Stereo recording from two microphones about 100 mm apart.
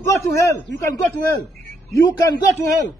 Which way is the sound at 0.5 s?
25° left (ahead or behind).